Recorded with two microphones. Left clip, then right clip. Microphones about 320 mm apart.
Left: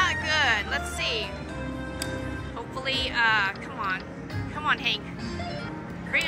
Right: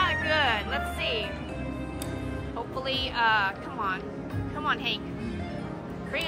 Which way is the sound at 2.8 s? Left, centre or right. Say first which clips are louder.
Left 2 dB; centre.